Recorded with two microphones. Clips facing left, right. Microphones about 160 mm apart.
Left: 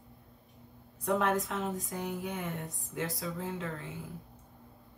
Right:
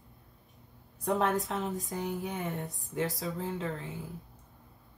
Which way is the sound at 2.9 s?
30° right (ahead or behind).